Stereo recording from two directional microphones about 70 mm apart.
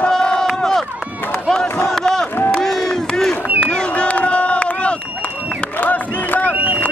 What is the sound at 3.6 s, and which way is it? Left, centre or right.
Run, centre.